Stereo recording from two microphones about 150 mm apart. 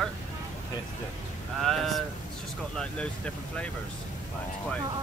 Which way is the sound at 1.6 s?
Centre (ahead or behind).